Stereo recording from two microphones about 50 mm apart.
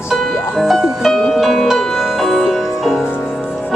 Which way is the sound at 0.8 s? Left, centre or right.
Centre.